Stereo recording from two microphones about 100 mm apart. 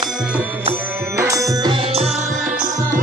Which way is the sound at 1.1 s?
30° right (ahead or behind).